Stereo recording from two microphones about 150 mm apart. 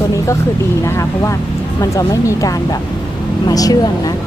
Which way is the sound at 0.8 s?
20° left (ahead or behind).